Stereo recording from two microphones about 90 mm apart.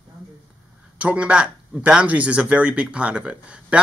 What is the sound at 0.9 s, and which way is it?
Speech, 15° right (ahead or behind).